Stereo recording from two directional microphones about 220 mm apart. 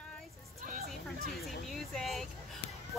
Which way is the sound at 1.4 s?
Centre (ahead or behind).